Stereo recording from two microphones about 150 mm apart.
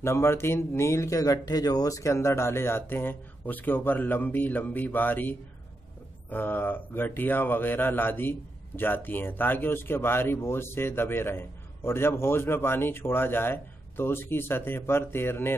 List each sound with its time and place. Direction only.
0.0 s speech: 15° left (ahead or behind)
6.3 s speech: 15° left (ahead or behind)